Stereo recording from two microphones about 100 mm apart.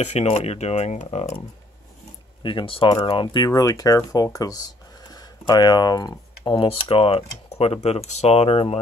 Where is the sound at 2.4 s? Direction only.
55° left (ahead or behind).